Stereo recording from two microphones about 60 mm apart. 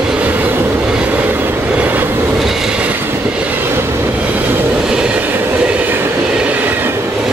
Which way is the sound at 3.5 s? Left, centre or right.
Right.